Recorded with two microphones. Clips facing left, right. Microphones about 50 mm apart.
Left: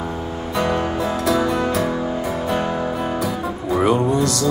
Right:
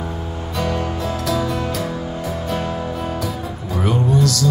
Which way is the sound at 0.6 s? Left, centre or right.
Left.